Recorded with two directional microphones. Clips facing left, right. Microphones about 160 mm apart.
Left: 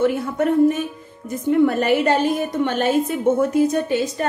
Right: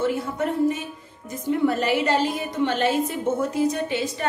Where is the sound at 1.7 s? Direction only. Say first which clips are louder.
Left 4 dB; 50° left (ahead or behind).